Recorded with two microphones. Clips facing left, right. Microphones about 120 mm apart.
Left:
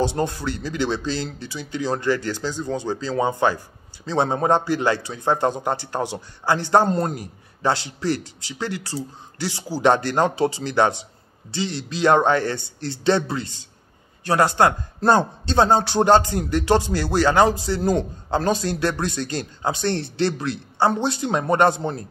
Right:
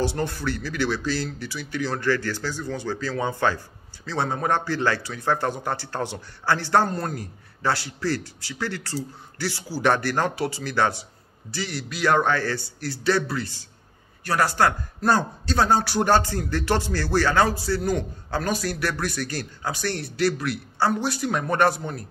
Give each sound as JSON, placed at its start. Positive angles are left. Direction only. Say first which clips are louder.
{"t": 0.0, "sound": "speech", "louder": "left 3 dB", "side_deg": 20}